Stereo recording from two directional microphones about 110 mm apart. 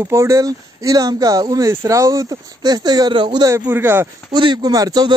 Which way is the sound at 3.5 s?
25° right (ahead or behind).